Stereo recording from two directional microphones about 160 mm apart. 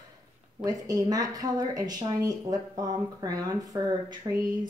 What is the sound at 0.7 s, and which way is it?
Speech, 25° right (ahead or behind).